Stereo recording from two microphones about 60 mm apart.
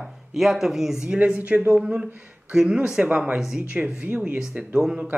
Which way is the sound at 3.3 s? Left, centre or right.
Centre.